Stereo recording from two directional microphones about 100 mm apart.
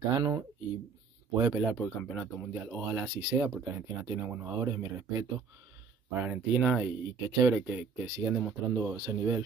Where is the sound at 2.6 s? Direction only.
15° right (ahead or behind).